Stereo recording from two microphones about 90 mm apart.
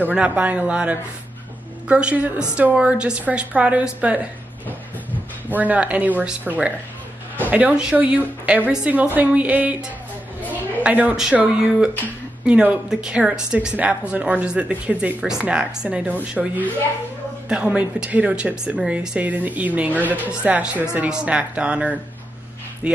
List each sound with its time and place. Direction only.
0.0 s a woman's voice: 15° right (ahead or behind)
5.5 s a woman's voice: 15° right (ahead or behind)